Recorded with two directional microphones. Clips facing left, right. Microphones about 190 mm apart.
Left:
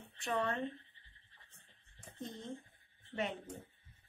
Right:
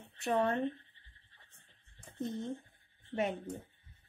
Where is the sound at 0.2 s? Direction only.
40° right (ahead or behind).